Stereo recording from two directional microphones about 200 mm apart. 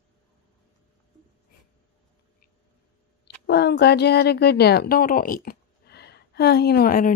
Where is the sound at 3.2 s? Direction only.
55° left (ahead or behind).